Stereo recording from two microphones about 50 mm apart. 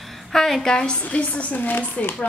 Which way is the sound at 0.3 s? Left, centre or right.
Centre.